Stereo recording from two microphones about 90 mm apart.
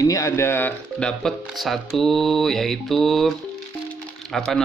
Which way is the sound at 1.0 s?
5° left (ahead or behind).